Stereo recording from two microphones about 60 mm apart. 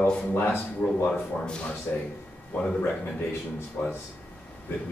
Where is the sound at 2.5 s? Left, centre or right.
Left.